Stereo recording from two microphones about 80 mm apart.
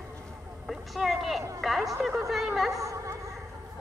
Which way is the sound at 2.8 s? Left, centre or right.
Right.